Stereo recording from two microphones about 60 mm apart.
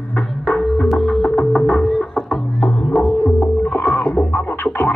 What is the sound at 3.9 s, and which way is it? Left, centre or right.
Scratching, left.